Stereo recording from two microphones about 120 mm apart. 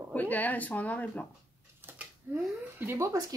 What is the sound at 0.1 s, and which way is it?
Speech, 15° left (ahead or behind).